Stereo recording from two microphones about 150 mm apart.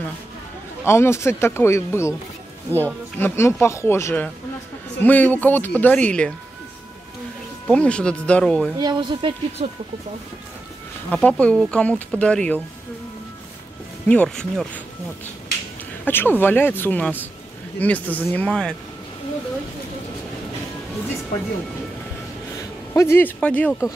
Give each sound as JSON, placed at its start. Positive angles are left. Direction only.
{"t": 0.8, "sound": "speech", "side_deg": 15}
{"t": 7.6, "sound": "speech", "side_deg": 5}
{"t": 8.7, "sound": "speech", "side_deg": -30}
{"t": 11.1, "sound": "speech", "side_deg": 10}
{"t": 14.0, "sound": "speech", "side_deg": 5}
{"t": 16.1, "sound": "speech", "side_deg": 15}
{"t": 22.9, "sound": "speech", "side_deg": 15}